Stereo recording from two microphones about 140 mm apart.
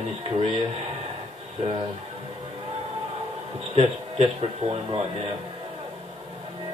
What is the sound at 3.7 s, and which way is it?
Speech, 45° right (ahead or behind).